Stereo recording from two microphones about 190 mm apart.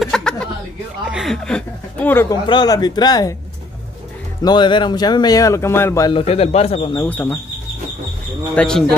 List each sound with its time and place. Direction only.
0.0 s chuckle: 5° left (ahead or behind)
1.1 s speech: centre (ahead or behind)
2.4 s speech: 20° left (ahead or behind)
4.4 s speech: 25° left (ahead or behind)
6.1 s speech: 30° left (ahead or behind)
7.0 s speech: 10° left (ahead or behind)
8.5 s speech: 5° left (ahead or behind)